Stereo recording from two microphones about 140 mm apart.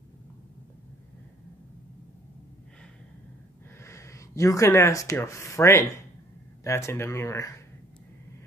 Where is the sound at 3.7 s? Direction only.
20° left (ahead or behind).